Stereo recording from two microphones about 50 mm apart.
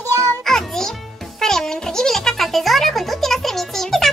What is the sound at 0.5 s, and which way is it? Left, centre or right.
Music, centre.